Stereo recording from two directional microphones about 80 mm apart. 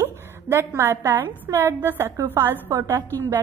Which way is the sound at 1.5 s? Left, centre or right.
Right.